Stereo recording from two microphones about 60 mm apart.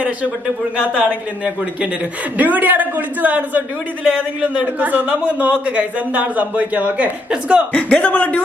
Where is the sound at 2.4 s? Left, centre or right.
Right.